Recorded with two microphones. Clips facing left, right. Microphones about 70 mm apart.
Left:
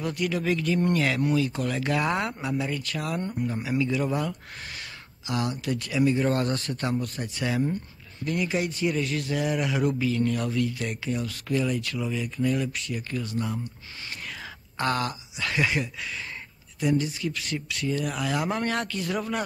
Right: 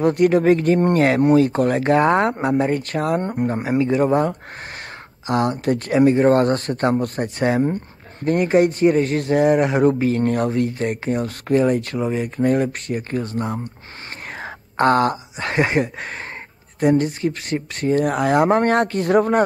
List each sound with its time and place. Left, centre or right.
0.0 s speech: right